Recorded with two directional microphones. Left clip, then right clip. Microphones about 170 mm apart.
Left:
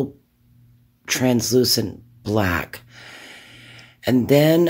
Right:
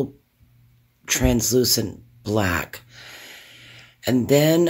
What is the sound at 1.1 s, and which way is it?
Speech, 5° left (ahead or behind).